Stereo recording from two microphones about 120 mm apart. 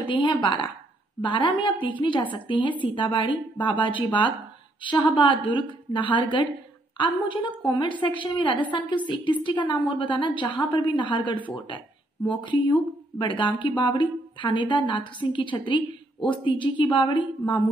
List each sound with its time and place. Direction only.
0.0 s a woman's voice: 40° left (ahead or behind)